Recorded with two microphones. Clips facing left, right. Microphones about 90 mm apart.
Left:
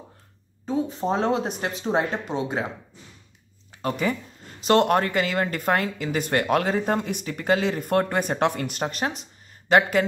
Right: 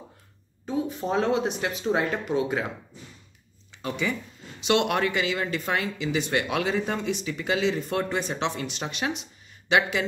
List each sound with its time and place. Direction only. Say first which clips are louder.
0.7 s speech: left 3 dB; 35° left (ahead or behind)
3.7 s speech: left 4 dB; 45° left (ahead or behind)